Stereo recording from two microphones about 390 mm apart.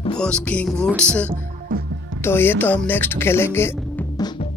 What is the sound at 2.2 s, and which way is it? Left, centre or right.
Speech, centre.